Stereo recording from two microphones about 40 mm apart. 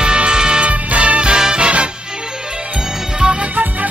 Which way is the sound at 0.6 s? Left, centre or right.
Right.